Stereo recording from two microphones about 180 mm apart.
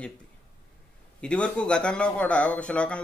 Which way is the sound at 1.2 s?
5° left (ahead or behind).